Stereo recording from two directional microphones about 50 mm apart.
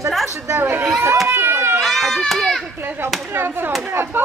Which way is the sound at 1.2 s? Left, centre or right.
Right.